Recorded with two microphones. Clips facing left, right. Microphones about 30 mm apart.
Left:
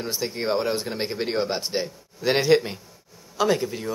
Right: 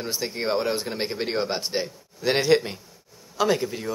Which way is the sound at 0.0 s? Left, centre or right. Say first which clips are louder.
Left 1 dB; centre.